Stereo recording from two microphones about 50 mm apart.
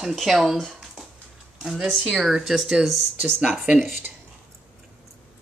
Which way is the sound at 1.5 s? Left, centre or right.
Centre.